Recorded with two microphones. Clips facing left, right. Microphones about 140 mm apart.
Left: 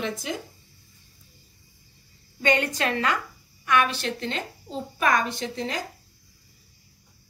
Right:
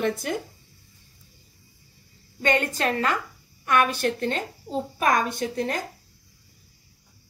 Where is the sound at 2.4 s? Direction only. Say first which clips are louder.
Even; 45° right (ahead or behind).